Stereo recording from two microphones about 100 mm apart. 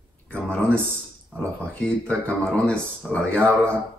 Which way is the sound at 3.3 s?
25° right (ahead or behind).